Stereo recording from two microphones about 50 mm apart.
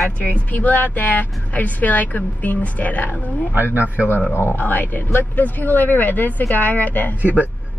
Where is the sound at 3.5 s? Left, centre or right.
Right.